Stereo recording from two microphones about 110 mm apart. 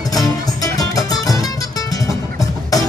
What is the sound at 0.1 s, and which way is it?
Music, 35° left (ahead or behind).